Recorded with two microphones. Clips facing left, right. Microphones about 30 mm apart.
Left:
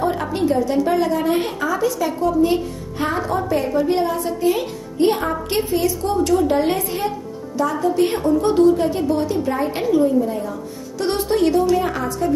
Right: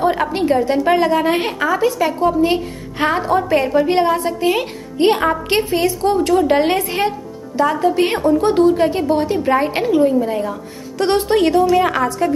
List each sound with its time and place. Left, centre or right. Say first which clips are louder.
0.3 s a woman's voice: right 3 dB; right
6.1 s a woman's voice: even; right
6.5 s a woman's voice: right 4 dB; right
8.3 s a woman's voice: right 1 dB; right